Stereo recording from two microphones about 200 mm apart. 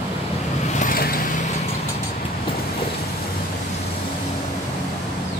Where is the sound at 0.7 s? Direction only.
45° left (ahead or behind).